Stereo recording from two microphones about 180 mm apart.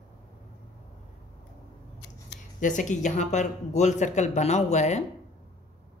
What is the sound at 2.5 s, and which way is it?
A woman's voice, 45° left (ahead or behind).